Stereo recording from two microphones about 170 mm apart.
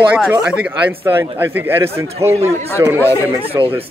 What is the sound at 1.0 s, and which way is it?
Speech, 15° right (ahead or behind).